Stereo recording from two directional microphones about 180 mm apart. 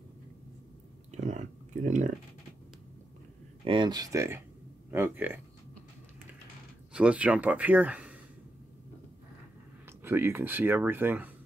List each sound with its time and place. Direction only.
1.1 s a sound: 40° right (ahead or behind)
3.6 s speech: 25° right (ahead or behind); by 5.4 s 10° right (ahead or behind)
6.9 s speech: 5° right (ahead or behind)
10.0 s speech: 15° right (ahead or behind)